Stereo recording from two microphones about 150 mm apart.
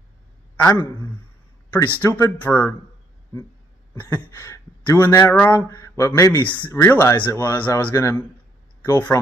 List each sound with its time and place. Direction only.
0.6 s a man's voice: 15° left (ahead or behind)
2.0 s speech: 15° left (ahead or behind)
3.9 s speech: 10° left (ahead or behind)